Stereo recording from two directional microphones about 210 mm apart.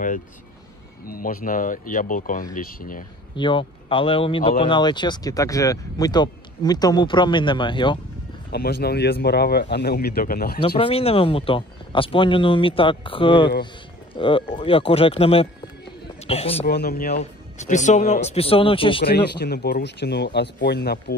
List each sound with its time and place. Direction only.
1.0 s speech: 45° left (ahead or behind)
3.3 s speech: 25° left (ahead or behind)
8.5 s speech: 50° left (ahead or behind)
10.8 s a man's voice: 25° left (ahead or behind)
16.6 s speech: 45° left (ahead or behind)
17.2 s speech: 35° left (ahead or behind)
19.0 s speech: 50° left (ahead or behind)